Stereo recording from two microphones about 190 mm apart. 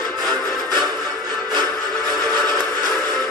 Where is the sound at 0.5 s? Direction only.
20° right (ahead or behind).